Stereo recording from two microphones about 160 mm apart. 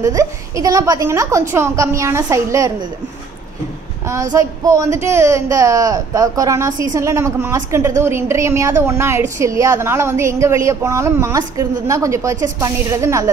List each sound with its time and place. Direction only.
0.0 s speech: 20° right (ahead or behind)
4.1 s speech: 20° right (ahead or behind)